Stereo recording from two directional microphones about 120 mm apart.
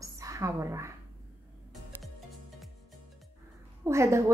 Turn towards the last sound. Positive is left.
turn(degrees=-25)  # may be behind; listen again after turning